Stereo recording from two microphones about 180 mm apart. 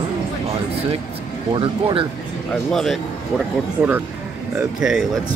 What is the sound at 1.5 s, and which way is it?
Speech, 30° right (ahead or behind).